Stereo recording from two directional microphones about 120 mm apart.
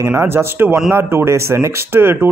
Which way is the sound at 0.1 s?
20° right (ahead or behind).